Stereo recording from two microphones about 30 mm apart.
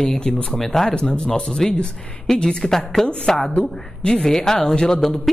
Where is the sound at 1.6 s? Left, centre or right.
Centre.